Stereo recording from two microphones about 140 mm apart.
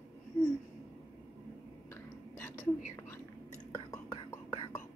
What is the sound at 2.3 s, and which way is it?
Whispering, 15° left (ahead or behind).